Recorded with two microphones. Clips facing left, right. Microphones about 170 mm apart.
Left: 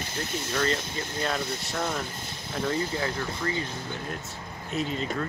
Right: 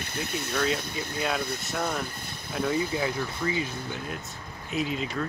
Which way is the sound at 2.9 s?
10° right (ahead or behind).